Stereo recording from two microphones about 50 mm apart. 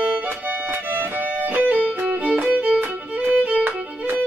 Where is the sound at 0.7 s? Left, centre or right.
Right.